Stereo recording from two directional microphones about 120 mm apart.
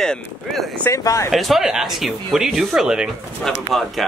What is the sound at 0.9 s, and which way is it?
Speech, 30° left (ahead or behind).